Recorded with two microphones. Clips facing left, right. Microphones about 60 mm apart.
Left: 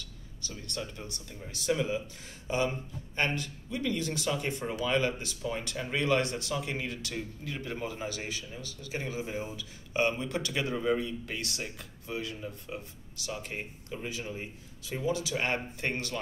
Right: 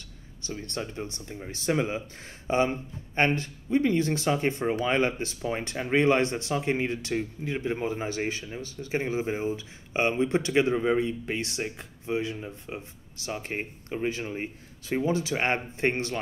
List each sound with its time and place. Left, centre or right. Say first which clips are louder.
0.0 s speech: right 3 dB; right
13.3 s speech: right 5 dB; right